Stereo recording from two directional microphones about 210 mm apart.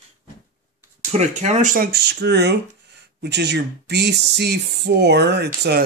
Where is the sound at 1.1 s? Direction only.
35° right (ahead or behind).